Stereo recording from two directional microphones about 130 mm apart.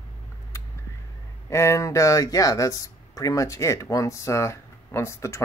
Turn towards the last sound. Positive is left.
turn(degrees=20)  # may be behind; listen again after turning